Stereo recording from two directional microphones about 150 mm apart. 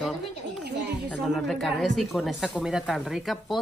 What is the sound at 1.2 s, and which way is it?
Speech, centre (ahead or behind).